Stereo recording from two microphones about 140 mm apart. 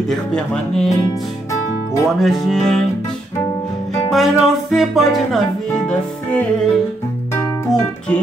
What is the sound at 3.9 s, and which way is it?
Music, centre (ahead or behind).